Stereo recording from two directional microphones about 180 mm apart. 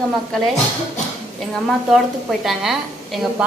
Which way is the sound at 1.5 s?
Centre (ahead or behind).